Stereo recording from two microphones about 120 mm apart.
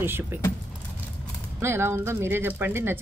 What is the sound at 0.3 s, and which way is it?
Speech, 15° right (ahead or behind).